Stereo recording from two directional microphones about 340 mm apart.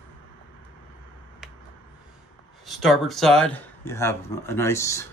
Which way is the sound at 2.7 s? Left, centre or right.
Centre.